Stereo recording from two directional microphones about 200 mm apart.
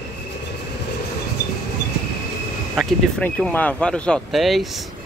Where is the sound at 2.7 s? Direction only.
Centre (ahead or behind).